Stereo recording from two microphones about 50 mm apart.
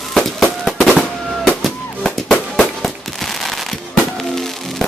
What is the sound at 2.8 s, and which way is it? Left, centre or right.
Fireworks, centre.